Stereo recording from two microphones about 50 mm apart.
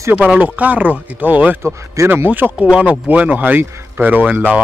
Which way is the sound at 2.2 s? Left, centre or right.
Right.